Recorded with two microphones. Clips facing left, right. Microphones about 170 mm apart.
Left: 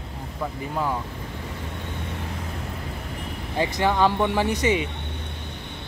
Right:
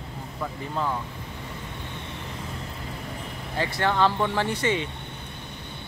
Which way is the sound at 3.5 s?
15° left (ahead or behind).